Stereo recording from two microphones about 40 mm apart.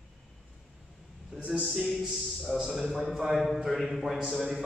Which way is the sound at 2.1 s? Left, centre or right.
Centre.